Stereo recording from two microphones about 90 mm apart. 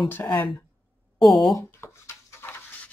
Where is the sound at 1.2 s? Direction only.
Centre (ahead or behind).